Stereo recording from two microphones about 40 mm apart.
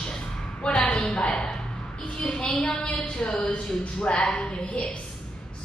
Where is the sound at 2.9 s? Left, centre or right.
Left.